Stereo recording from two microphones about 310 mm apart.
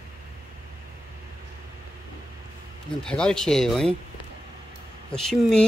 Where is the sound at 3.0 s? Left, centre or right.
Centre.